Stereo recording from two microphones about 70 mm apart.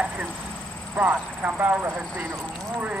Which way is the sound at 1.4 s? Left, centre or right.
Right.